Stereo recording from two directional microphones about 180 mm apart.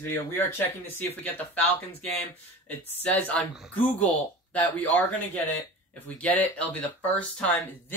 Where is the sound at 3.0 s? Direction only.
10° left (ahead or behind).